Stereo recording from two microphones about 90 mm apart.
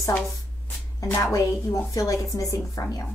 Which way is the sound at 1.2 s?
35° left (ahead or behind).